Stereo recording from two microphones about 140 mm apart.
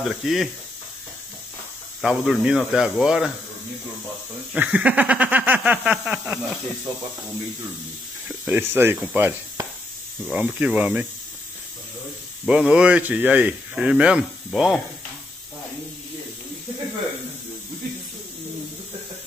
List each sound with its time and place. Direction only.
0.0 s speech: centre (ahead or behind)
2.0 s speech: 5° right (ahead or behind)
4.6 s speech: 10° right (ahead or behind)
8.5 s speech: 15° right (ahead or behind)
12.4 s speech: 5° right (ahead or behind)